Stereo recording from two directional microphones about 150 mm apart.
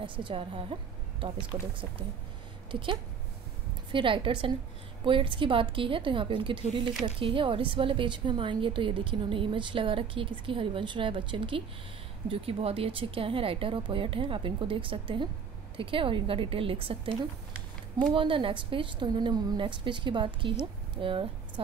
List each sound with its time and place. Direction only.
0.0 s a woman's voice: 35° right (ahead or behind)
1.5 s speech: 25° right (ahead or behind)
2.7 s a woman's voice: 35° right (ahead or behind)